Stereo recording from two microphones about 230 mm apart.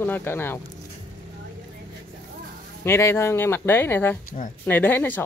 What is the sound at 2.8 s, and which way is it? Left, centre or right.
Speech, centre.